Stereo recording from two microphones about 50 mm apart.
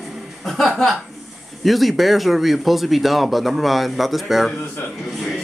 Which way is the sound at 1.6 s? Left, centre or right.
Centre.